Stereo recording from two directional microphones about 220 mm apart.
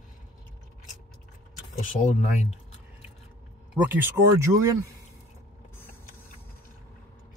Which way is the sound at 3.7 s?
5° right (ahead or behind).